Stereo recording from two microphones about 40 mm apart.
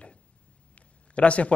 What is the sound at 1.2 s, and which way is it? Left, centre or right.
Speech, left.